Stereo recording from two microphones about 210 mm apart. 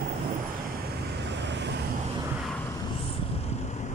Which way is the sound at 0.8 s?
55° right (ahead or behind).